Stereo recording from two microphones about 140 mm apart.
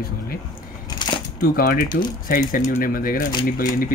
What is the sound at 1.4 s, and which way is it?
Speech, 85° left.